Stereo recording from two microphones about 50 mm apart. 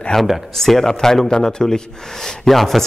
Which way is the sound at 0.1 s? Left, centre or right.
Centre.